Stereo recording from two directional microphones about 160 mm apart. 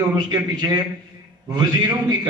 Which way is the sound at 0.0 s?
25° right (ahead or behind).